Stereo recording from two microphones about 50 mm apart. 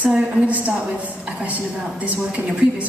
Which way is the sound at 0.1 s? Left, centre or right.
Centre.